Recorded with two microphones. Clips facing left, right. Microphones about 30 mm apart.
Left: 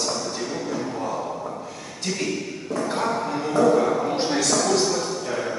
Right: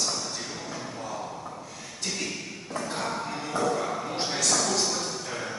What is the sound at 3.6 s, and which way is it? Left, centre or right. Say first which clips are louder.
Speech: left 10 dB; left.